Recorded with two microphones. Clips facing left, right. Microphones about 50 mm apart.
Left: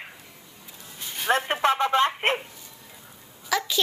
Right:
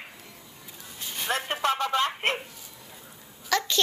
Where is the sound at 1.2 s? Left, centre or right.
Left.